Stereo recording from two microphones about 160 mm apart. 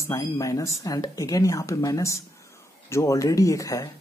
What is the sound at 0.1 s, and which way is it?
Speech, 20° left (ahead or behind).